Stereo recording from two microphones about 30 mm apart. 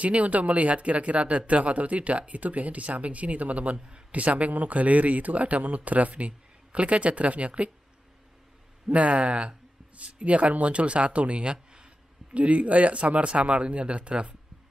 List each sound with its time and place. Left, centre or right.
0.0 s speech: right
3.7 s a man's voice: right
4.1 s speech: right
8.8 s speech: right
11.5 s a sound: right
12.4 s speech: right